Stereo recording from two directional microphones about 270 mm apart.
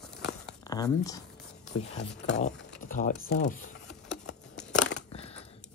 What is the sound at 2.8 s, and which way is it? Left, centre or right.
Speech, left.